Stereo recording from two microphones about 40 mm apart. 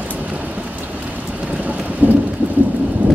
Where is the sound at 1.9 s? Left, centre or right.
Right.